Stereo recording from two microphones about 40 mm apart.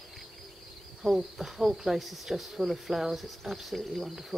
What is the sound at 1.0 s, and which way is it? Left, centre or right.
Speech, centre.